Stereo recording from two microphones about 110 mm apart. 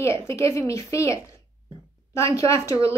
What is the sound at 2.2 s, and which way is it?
Speech, 25° left (ahead or behind).